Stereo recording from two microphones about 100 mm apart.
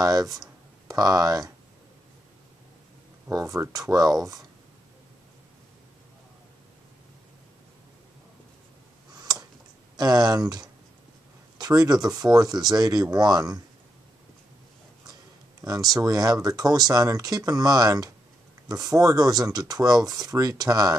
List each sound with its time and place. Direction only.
0.0 s speech: 40° right (ahead or behind)
3.3 s speech: 30° right (ahead or behind)
9.2 s tick: 40° right (ahead or behind)
9.9 s speech: 40° right (ahead or behind)
15.9 s speech: 40° right (ahead or behind)